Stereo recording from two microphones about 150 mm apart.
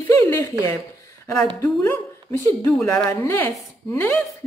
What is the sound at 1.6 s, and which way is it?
Speech, 15° left (ahead or behind).